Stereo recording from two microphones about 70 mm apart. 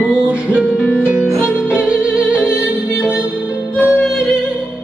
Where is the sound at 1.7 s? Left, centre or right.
Centre.